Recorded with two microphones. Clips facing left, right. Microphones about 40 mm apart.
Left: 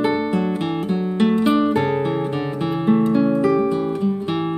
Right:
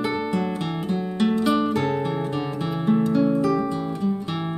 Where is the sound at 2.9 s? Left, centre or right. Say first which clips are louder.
Left 3 dB; left.